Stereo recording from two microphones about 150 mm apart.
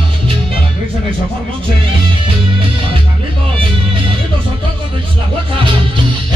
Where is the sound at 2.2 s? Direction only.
35° right (ahead or behind).